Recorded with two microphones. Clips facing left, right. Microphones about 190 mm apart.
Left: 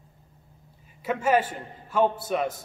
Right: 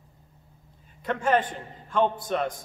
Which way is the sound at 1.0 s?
5° left (ahead or behind).